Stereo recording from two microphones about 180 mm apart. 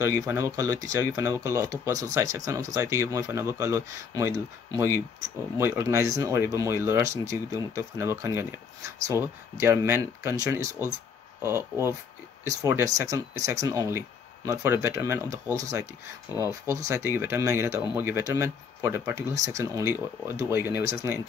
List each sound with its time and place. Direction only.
0.0 s speech: 15° right (ahead or behind)